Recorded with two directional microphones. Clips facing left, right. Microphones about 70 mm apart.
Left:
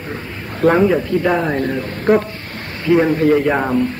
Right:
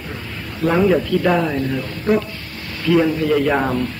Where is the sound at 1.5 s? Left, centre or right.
Left.